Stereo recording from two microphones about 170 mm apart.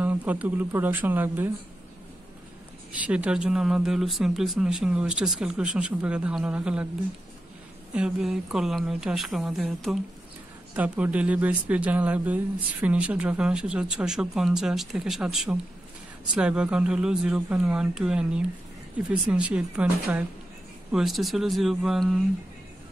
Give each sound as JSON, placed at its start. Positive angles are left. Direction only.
{"t": 0.0, "sound": "speech", "side_deg": -10}
{"t": 2.9, "sound": "speech", "side_deg": -5}
{"t": 7.9, "sound": "speech", "side_deg": -5}